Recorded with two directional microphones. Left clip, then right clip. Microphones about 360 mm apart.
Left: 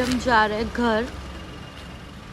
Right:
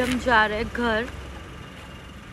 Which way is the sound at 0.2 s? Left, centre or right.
Centre.